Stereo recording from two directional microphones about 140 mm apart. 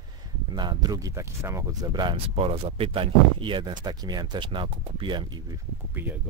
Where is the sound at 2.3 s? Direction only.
45° right (ahead or behind).